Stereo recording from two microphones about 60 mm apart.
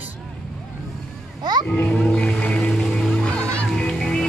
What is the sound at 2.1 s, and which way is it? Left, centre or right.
Music, centre.